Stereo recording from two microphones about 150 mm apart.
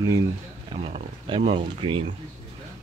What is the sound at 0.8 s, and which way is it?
Speech, 35° right (ahead or behind).